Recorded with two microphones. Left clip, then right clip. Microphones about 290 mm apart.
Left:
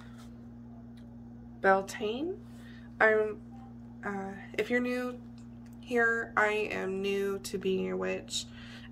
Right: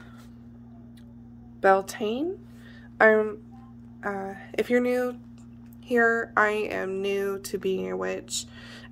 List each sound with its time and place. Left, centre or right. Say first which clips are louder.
1.6 s a woman's voice: right 5 dB; right